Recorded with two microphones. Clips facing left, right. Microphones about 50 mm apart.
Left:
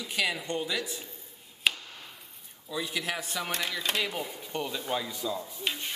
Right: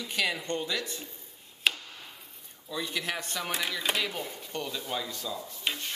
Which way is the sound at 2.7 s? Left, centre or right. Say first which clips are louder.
Even; centre.